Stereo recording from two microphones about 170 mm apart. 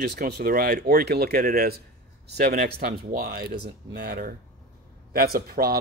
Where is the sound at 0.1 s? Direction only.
70° right (ahead or behind).